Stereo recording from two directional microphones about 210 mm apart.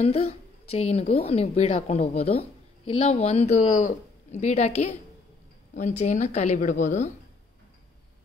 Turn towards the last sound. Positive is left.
turn(degrees=35)  # may be behind; listen again after turning